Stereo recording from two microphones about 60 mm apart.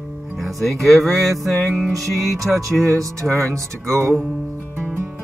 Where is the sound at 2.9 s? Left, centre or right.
Right.